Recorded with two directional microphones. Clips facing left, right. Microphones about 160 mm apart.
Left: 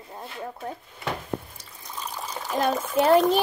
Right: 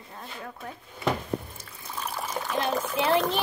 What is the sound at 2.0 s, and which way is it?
Trickle, 10° right (ahead or behind).